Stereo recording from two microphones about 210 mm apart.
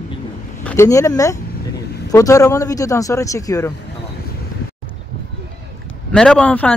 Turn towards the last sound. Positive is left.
turn(degrees=5)  # may be behind; listen again after turning